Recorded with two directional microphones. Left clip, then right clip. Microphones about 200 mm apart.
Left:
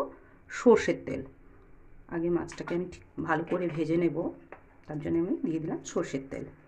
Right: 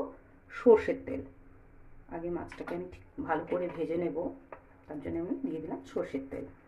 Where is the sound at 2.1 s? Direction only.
45° left (ahead or behind).